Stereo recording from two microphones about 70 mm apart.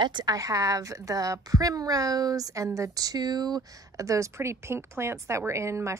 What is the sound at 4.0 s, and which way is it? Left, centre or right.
A woman's voice, right.